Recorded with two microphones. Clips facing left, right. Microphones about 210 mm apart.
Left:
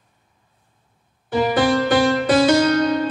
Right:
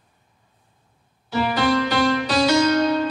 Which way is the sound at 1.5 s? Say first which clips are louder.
Left 3 dB; 50° left (ahead or behind).